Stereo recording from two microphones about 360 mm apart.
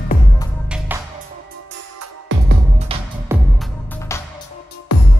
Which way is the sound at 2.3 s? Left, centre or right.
Right.